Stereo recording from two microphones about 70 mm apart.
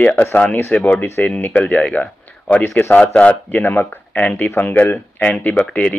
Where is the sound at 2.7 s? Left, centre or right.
Left.